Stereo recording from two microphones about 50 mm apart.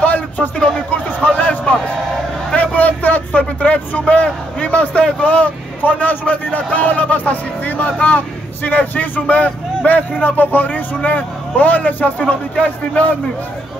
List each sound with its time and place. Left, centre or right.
0.0 s a sound: left
2.5 s vehicle: left
5.2 s a man's voice: left